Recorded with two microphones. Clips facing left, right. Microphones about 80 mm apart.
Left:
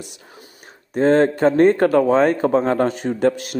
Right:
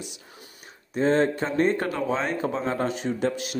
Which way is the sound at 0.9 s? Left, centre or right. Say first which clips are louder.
Left 6 dB; left.